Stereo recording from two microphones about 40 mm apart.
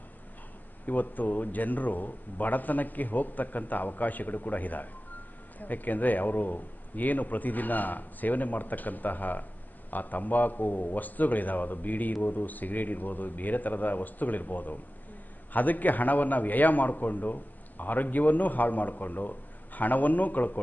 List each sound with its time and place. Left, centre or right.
0.8 s a man's voice: left